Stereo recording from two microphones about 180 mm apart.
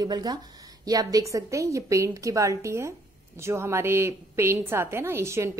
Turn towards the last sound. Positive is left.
turn(degrees=-15)  # may be behind; listen again after turning